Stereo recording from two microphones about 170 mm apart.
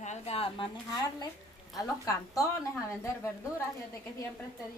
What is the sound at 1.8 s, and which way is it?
Speech, 20° left (ahead or behind).